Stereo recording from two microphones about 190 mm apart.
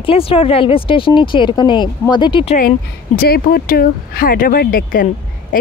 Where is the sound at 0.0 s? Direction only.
30° left (ahead or behind).